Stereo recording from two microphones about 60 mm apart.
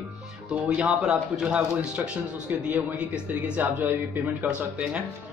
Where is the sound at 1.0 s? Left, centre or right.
Centre.